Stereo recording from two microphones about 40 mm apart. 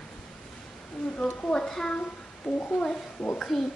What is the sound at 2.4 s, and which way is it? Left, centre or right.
Speech, left.